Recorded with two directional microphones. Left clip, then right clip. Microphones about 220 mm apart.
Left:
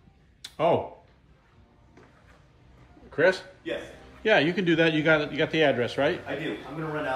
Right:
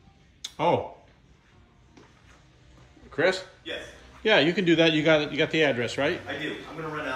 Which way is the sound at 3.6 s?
30° left (ahead or behind).